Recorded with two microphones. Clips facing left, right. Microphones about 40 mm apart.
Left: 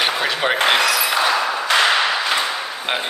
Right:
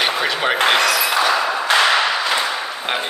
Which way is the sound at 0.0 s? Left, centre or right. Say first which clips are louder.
Right 1 dB; centre.